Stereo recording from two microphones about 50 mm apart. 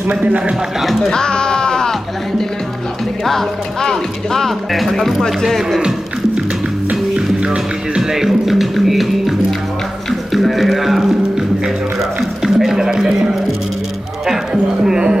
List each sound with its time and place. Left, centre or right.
0.1 s speech: right
0.7 s speech: centre
1.1 s music: centre
3.3 s speech: centre
5.8 s music: centre
7.2 s speech: centre
10.3 s music: centre
14.5 s music: centre